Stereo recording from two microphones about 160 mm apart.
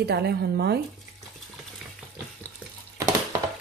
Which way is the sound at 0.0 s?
85° right.